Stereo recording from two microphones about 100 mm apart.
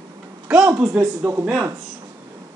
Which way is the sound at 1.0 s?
20° right (ahead or behind).